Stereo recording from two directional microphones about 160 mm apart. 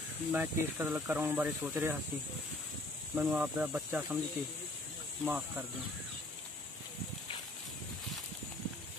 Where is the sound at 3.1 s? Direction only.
10° right (ahead or behind).